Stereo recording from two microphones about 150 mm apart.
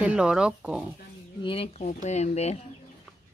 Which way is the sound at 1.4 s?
35° left (ahead or behind).